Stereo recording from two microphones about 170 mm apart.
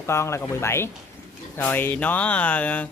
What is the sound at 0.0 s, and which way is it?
Speech, 15° left (ahead or behind).